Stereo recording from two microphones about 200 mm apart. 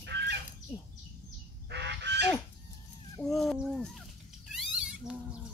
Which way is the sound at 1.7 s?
60° right (ahead or behind).